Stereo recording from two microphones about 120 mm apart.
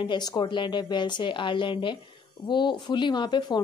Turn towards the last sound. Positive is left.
turn(degrees=35)  # may be behind; listen again after turning